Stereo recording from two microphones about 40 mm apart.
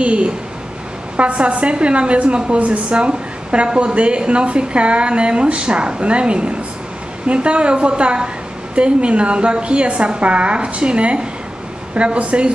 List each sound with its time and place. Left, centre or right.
0.0 s a woman's voice: right